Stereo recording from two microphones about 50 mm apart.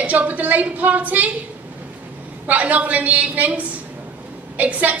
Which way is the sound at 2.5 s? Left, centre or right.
Right.